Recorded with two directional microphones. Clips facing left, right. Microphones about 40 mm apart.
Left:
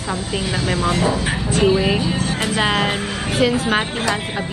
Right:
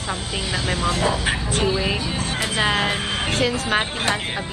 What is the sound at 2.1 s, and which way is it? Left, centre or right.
Speech, left.